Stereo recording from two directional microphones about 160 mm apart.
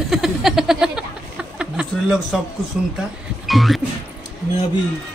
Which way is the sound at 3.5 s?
Centre (ahead or behind).